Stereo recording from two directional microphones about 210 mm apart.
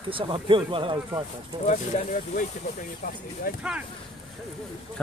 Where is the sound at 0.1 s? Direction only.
25° right (ahead or behind).